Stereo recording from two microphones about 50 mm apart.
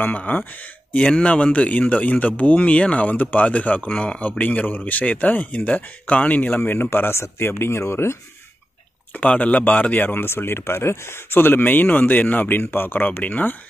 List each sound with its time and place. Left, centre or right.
0.0 s speech: left
6.7 s speech: left
9.1 s speech: left
10.3 s speech: left